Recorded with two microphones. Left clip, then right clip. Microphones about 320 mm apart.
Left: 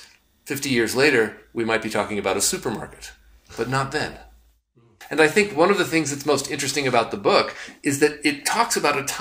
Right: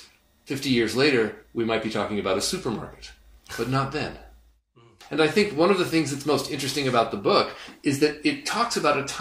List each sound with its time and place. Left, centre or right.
0.5 s speech: centre
5.1 s speech: left